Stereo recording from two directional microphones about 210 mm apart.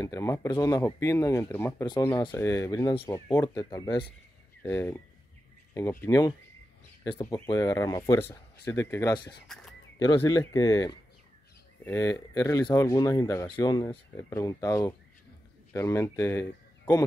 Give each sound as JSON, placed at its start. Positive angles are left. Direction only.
{"t": 0.0, "sound": "speech", "side_deg": 15}
{"t": 9.5, "sound": "speech", "side_deg": 0}
{"t": 9.9, "sound": "speech", "side_deg": 15}